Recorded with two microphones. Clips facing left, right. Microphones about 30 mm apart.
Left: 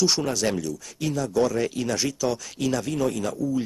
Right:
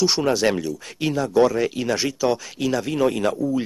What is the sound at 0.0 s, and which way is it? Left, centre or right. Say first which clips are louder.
Speech: right 4 dB; right.